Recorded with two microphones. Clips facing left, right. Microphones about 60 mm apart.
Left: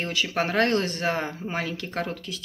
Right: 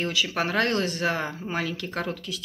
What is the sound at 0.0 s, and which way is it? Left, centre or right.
Speech, left.